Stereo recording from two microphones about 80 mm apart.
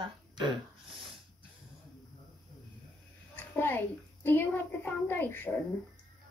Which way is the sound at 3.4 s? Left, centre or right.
Left.